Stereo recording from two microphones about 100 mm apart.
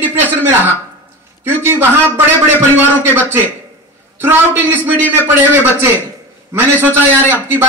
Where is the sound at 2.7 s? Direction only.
20° right (ahead or behind).